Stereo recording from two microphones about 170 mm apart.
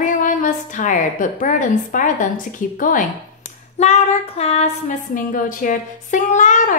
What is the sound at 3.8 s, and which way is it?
A woman's voice, 40° left (ahead or behind).